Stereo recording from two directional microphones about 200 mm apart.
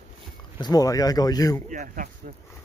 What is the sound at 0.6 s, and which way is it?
Speech, 20° left (ahead or behind).